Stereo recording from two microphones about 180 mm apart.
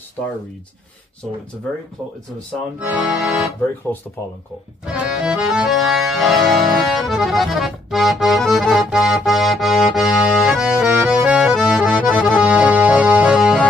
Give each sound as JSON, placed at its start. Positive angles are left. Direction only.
{"t": 2.8, "sound": "music", "side_deg": -5}
{"t": 4.8, "sound": "accordion", "side_deg": -5}